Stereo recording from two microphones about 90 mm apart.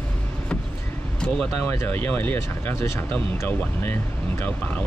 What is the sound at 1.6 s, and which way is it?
Speech, 20° left (ahead or behind).